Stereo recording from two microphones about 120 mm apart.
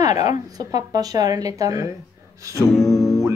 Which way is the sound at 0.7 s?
30° right (ahead or behind).